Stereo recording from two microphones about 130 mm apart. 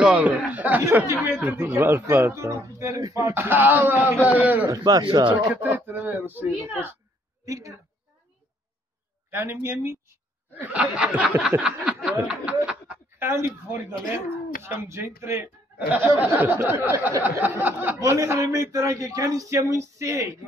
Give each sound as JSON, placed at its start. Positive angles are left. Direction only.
{"t": 0.0, "sound": "a man's voice", "side_deg": -10}
{"t": 3.3, "sound": "speech", "side_deg": -15}
{"t": 4.6, "sound": "a man's voice", "side_deg": -30}
{"t": 5.5, "sound": "speech", "side_deg": -15}
{"t": 7.4, "sound": "a woman's voice", "side_deg": -25}
{"t": 9.3, "sound": "speech", "side_deg": -20}
{"t": 18.1, "sound": "a man's voice", "side_deg": -25}